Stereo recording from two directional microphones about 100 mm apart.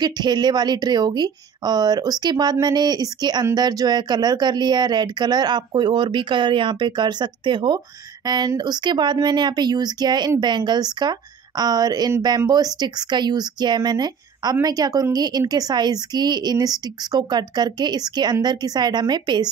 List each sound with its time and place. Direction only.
0.0 s a woman's voice: 45° right (ahead or behind)